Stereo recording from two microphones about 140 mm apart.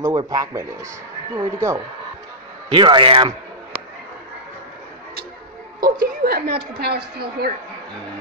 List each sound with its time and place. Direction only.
0.0 s speech: 30° right (ahead or behind)
2.7 s speech: 35° right (ahead or behind)
5.8 s a woman's voice: 90° right